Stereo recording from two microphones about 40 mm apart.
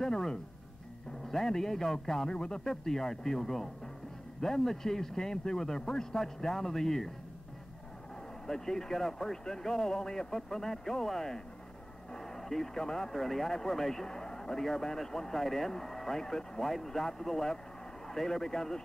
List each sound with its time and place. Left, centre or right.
0.0 s music: centre
1.3 s speech: centre
2.6 s speech: centre
8.5 s speech: centre